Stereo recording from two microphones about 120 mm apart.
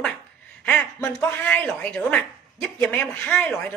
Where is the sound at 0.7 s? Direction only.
10° left (ahead or behind).